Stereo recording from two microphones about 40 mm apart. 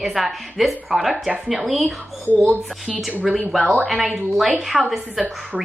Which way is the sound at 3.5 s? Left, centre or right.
Centre.